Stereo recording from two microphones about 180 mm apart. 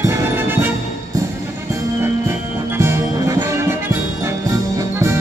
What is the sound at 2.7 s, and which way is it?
Music, 15° right (ahead or behind).